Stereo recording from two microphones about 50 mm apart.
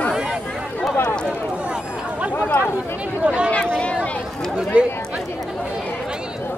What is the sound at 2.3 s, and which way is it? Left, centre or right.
Chatter, left.